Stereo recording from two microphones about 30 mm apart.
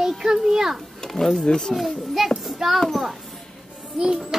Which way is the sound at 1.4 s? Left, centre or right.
Left.